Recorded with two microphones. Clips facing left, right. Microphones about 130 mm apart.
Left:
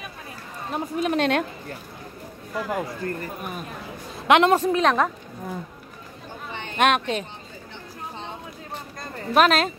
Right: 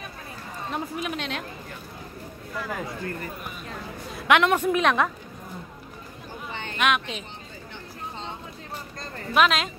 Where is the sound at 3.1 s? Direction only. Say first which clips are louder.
Left 4 dB; 50° left (ahead or behind).